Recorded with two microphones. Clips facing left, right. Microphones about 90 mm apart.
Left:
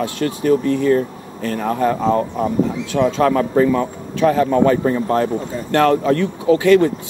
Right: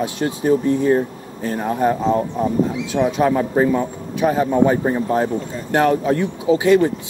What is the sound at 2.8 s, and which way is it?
A man's voice, 20° right (ahead or behind).